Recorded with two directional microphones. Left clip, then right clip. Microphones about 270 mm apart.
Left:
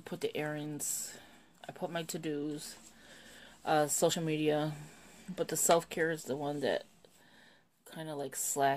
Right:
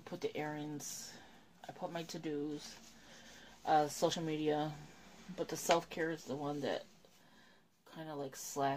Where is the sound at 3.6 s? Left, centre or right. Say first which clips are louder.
Left 3 dB; left.